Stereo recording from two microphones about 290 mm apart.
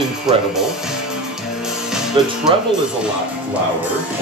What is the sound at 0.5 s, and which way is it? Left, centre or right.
Music, centre.